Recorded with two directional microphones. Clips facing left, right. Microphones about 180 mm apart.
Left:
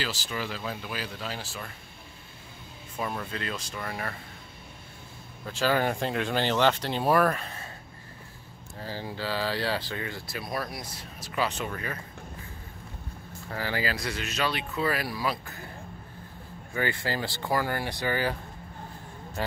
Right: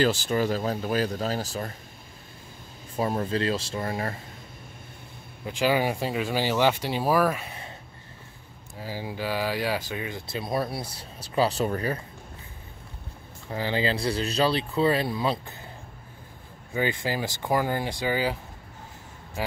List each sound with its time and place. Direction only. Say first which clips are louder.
0.0 s speech: right 10 dB; 50° right (ahead or behind)
3.0 s speech: right 7 dB; 35° right (ahead or behind)
5.4 s speech: right 2 dB; 15° right (ahead or behind)
8.7 s speech: right 2 dB; 10° right (ahead or behind); by 12.0 s 35° right (ahead or behind)
13.5 s speech: right 4 dB; 20° right (ahead or behind)
16.7 s speech: right 3 dB; 15° right (ahead or behind)